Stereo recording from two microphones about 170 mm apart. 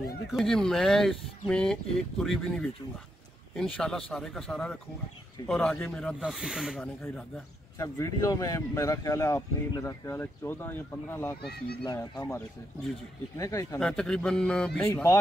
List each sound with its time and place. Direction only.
0.3 s speech: centre (ahead or behind)
7.8 s speech: 20° left (ahead or behind)
11.4 s speech: 70° left (ahead or behind)
11.8 s speech: 20° left (ahead or behind)
13.7 s speech: 5° left (ahead or behind)